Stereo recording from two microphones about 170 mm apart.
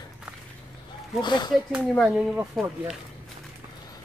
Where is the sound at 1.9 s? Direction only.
5° left (ahead or behind).